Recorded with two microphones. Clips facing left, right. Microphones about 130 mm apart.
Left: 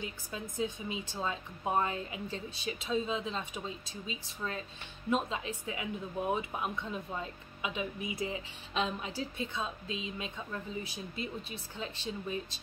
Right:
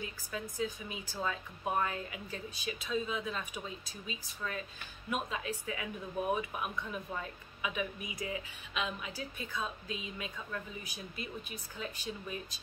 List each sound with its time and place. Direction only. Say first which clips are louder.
0.0 s speech: even; 25° left (ahead or behind)